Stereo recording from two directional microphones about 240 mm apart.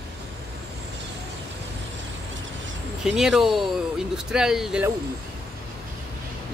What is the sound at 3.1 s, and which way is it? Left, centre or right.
Speech, centre.